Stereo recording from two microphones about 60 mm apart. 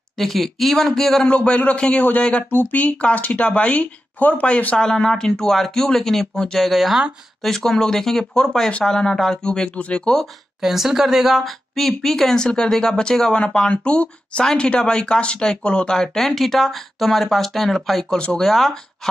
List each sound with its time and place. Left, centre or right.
0.2 s speech: centre
1.2 s a woman's voice: centre
2.5 s speech: left
4.7 s a woman's voice: centre
7.5 s a woman's voice: centre
10.6 s a woman's voice: centre
18.1 s a woman's voice: centre
18.4 s speech: centre